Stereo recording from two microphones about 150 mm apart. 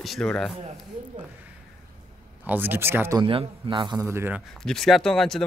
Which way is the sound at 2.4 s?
15° right (ahead or behind).